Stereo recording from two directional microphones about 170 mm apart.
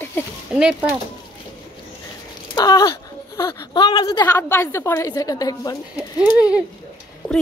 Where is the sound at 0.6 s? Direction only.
5° right (ahead or behind).